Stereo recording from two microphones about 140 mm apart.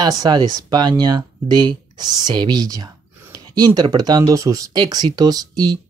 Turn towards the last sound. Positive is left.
turn(degrees=-30)  # may be behind; listen again after turning